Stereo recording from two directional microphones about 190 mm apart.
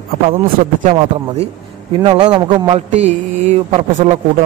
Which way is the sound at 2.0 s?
25° right (ahead or behind).